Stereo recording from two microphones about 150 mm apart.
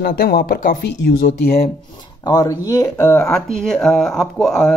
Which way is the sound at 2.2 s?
25° left (ahead or behind).